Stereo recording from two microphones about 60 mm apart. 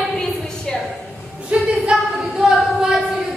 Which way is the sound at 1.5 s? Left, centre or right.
Right.